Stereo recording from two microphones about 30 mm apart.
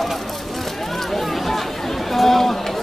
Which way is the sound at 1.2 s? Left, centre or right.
Centre.